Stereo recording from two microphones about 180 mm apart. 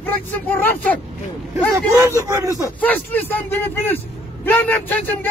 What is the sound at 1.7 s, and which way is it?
Speech, 15° right (ahead or behind).